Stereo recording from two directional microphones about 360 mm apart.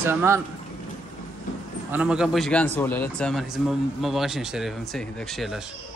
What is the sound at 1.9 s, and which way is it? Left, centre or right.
A man's voice, centre.